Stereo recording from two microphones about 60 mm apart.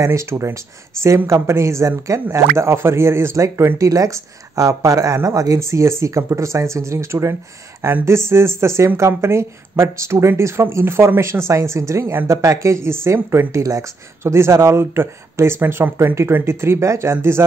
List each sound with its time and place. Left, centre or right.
0.0 s speech: right
3.7 s speech: right
13.5 s speech: right